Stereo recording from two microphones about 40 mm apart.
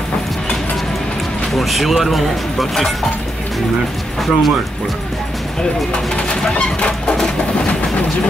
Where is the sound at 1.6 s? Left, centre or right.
Centre.